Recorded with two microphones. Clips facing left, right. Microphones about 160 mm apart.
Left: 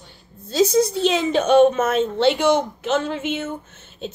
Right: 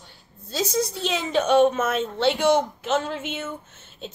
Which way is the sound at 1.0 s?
75° left (ahead or behind).